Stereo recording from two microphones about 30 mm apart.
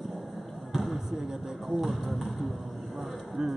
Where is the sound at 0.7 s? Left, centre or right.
Centre.